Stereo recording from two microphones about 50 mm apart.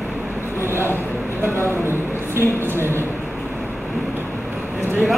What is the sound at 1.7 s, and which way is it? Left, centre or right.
Speech, right.